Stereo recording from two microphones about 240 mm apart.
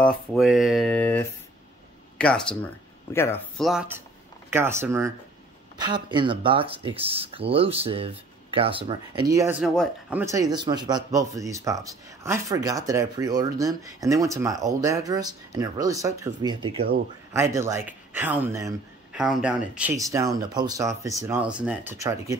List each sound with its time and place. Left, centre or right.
0.0 s speech: centre
17.8 s speech: centre